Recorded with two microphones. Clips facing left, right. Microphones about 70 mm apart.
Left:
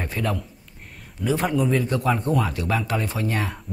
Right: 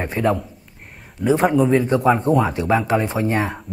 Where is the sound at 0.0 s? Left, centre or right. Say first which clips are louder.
Right 7 dB; right.